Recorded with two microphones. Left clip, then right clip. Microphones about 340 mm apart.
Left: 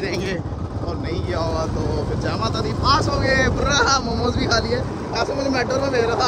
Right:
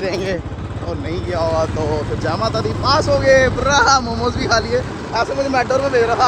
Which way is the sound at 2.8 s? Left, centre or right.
Centre.